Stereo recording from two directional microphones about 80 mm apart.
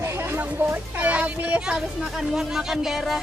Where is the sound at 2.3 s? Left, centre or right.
Centre.